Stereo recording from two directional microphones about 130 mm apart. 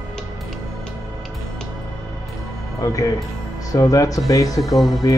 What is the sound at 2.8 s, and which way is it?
Speech, 25° left (ahead or behind).